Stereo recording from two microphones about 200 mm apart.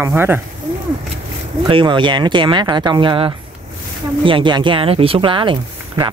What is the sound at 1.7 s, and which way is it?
Speech, 25° right (ahead or behind).